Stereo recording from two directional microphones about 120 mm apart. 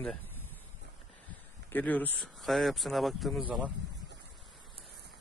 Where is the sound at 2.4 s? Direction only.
Centre (ahead or behind).